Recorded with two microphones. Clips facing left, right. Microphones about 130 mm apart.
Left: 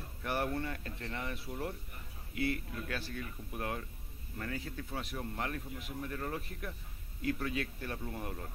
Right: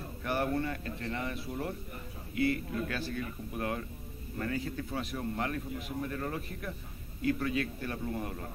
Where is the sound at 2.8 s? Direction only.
5° left (ahead or behind).